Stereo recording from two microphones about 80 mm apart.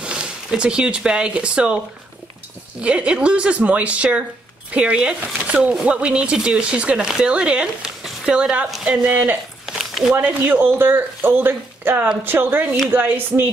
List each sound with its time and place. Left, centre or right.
0.0 s speech: centre
2.8 s a woman's voice: centre
9.7 s a sound: centre
10.1 s speech: right